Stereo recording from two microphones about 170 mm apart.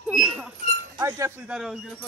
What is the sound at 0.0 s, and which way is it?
Chink, 5° right (ahead or behind).